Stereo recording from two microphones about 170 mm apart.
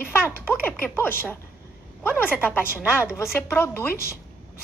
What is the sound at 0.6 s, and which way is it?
A woman's voice, 15° left (ahead or behind).